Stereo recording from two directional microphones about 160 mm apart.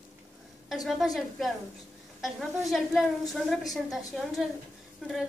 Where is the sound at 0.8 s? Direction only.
Centre (ahead or behind).